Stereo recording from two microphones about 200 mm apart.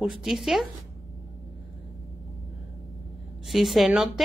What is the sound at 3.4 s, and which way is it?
Speech, centre (ahead or behind).